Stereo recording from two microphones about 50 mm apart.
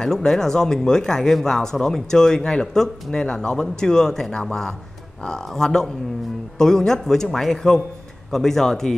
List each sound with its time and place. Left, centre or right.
0.0 s speech: centre